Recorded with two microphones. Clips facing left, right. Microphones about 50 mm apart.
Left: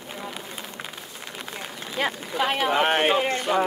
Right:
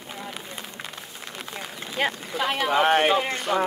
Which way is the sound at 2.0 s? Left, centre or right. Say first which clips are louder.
Left 2 dB; centre.